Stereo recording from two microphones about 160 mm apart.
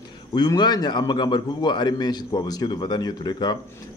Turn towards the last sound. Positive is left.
turn(degrees=25)  # may be behind; listen again after turning